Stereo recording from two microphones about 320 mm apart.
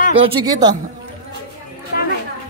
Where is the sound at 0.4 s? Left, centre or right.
Centre.